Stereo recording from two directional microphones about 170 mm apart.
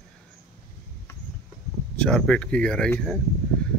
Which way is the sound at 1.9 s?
5° left (ahead or behind).